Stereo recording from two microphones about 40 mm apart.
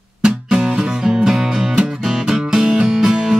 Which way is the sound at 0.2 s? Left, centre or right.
Centre.